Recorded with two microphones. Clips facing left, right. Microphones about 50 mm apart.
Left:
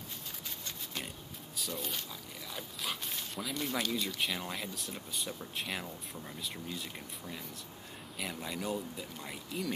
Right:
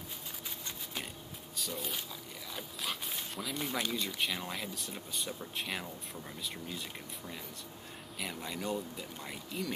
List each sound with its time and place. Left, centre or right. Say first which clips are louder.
1.6 s speech: even; centre
2.5 s dog: even; centre
3.5 s speech: left 1 dB; centre
4.2 s speech: even; centre